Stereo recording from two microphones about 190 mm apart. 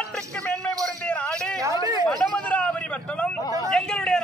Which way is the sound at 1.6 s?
15° right (ahead or behind).